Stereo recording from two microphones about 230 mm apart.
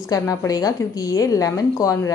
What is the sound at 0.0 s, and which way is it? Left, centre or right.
A woman's voice, centre.